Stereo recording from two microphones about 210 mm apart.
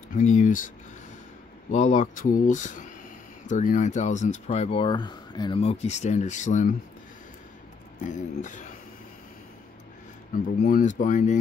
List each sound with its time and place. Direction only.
0.4 s speech: 40° left (ahead or behind)
1.7 s speech: 35° left (ahead or behind)
8.0 s speech: 35° left (ahead or behind)
10.3 s speech: 40° left (ahead or behind)